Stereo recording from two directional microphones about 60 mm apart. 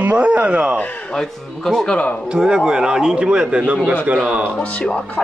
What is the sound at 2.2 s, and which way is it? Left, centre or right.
Speech, centre.